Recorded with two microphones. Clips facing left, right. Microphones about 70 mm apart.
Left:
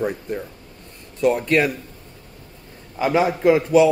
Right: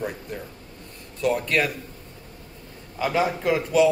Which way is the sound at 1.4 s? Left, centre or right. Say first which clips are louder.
Left 5 dB; left.